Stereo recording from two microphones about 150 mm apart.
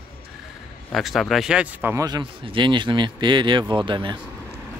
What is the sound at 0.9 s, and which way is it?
Speech, centre (ahead or behind).